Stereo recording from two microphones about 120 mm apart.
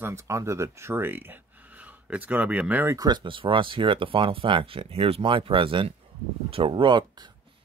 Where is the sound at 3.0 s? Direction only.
35° right (ahead or behind).